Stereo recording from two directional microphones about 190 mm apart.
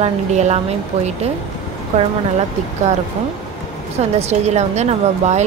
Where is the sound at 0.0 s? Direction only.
35° right (ahead or behind).